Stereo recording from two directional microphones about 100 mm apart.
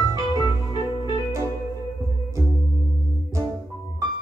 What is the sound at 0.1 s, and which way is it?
Organ, 45° left (ahead or behind).